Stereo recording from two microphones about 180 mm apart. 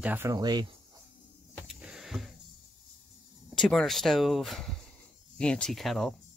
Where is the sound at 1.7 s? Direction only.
5° right (ahead or behind).